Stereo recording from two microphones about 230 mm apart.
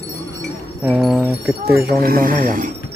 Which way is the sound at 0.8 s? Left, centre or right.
Centre.